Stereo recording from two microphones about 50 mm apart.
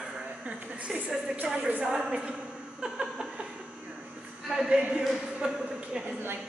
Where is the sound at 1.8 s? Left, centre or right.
Centre.